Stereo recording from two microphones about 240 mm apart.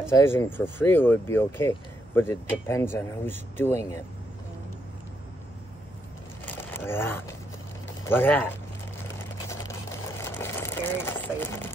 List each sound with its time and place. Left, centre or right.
0.1 s speech: centre
6.4 s a sound: centre
8.0 s speech: centre
9.0 s sewing machine: centre